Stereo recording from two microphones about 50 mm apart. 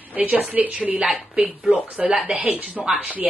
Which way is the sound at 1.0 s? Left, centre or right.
Centre.